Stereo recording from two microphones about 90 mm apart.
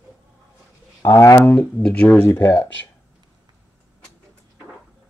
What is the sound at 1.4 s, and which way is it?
Speech, 20° left (ahead or behind).